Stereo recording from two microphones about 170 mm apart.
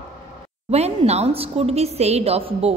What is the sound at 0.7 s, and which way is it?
A woman's voice, 40° right (ahead or behind).